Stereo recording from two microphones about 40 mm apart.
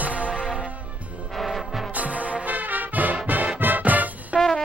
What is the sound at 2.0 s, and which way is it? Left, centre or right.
Music, right.